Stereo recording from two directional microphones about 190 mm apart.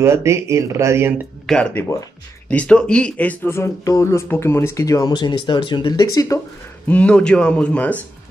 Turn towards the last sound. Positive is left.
turn(degrees=5)  # may be behind; listen again after turning